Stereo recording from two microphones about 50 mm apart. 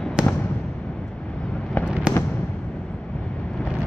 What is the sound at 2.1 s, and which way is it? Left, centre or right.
Fireworks, right.